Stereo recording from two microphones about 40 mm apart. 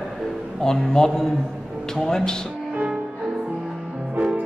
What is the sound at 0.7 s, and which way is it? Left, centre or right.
Speech, centre.